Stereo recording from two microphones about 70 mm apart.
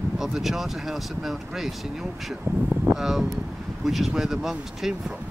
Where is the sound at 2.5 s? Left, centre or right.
Right.